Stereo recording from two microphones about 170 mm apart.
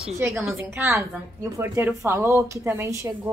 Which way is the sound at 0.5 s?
15° right (ahead or behind).